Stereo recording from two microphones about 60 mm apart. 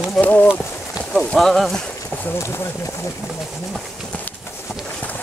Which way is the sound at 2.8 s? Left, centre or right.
Left.